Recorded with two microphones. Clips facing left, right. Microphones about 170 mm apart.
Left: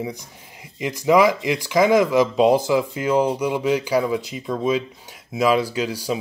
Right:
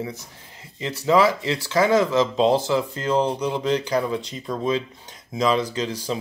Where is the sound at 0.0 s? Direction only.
15° left (ahead or behind).